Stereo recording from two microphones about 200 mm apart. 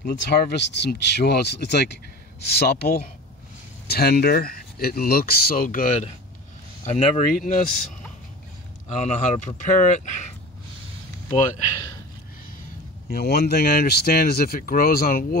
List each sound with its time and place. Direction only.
0.0 s speech: 55° left (ahead or behind)
8.8 s speech: 35° left (ahead or behind)
13.1 s speech: 55° left (ahead or behind)